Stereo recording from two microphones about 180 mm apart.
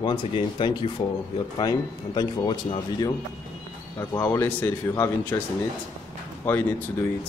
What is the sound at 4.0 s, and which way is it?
Speech, 15° left (ahead or behind).